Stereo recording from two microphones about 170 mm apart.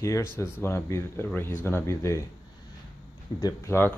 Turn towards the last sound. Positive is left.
turn(degrees=15)  # may be behind; listen again after turning